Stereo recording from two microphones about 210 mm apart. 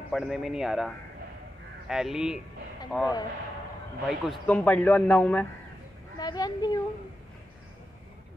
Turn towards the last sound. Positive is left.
turn(degrees=20)  # may be behind; listen again after turning